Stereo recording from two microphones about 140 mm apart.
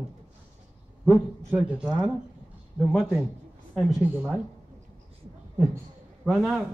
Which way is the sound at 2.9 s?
5° left (ahead or behind).